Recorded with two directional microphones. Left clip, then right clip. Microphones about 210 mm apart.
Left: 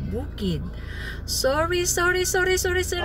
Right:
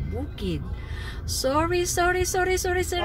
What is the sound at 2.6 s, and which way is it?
Speech, centre (ahead or behind).